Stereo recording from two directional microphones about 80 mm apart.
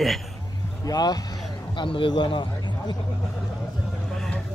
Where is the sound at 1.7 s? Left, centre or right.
Left.